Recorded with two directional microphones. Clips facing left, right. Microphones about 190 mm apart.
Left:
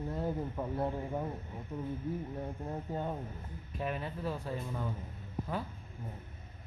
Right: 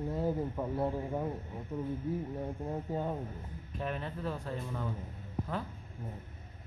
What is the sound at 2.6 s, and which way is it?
Speech, 5° right (ahead or behind).